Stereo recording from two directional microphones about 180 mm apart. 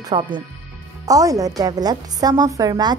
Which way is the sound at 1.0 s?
20° right (ahead or behind).